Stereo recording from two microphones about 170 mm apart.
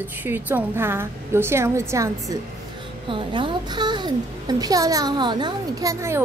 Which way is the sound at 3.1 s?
30° right (ahead or behind).